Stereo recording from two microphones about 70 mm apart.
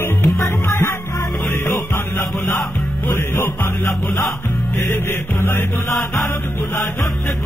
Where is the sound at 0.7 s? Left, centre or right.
Left.